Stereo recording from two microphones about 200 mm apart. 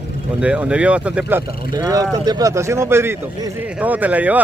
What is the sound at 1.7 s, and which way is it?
Speech, 20° right (ahead or behind).